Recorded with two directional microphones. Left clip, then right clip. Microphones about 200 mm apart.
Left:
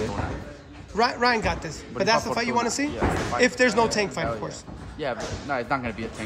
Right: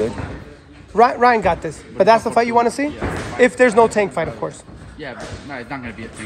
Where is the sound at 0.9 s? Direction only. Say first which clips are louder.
Right 9 dB; 10° left (ahead or behind).